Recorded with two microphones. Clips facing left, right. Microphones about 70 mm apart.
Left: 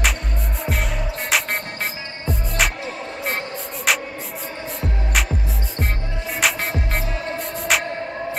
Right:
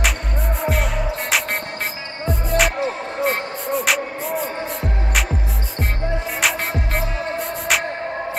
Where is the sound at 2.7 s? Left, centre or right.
Right.